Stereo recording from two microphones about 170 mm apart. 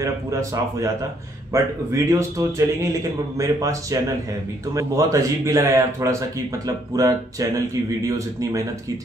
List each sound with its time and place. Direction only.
0.0 s a man's voice: 20° right (ahead or behind)